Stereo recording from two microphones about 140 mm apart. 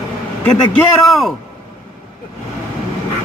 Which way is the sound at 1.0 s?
Centre (ahead or behind).